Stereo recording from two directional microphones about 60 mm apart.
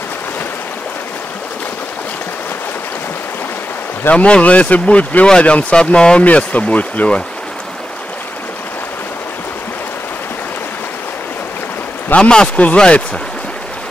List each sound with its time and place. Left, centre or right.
4.1 s speech: left
12.2 s a man's voice: centre